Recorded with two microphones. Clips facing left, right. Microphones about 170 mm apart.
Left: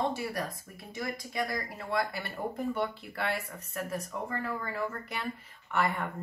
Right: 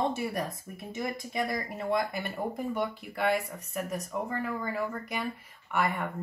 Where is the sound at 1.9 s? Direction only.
20° right (ahead or behind).